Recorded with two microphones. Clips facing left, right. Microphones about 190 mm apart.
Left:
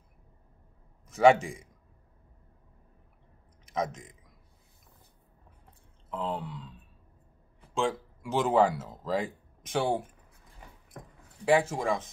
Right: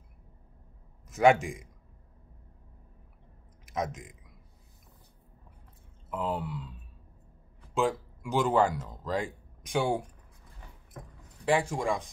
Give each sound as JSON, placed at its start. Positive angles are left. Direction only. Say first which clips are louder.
{"t": 1.0, "sound": "a sound", "louder": "left 2 dB", "side_deg": 0}
{"t": 1.4, "sound": "speech", "louder": "right 2 dB", "side_deg": 0}
{"t": 3.6, "sound": "speech", "louder": "left 1 dB", "side_deg": 0}
{"t": 6.0, "sound": "a sound", "louder": "right 1 dB", "side_deg": -5}
{"t": 7.7, "sound": "speech", "louder": "right 1 dB", "side_deg": 0}
{"t": 11.4, "sound": "speech", "louder": "left 2 dB", "side_deg": 5}